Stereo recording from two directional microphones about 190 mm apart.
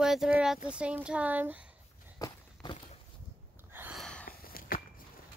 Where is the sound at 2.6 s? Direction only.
30° left (ahead or behind).